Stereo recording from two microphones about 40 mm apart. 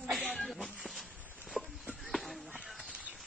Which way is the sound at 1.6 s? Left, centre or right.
Right.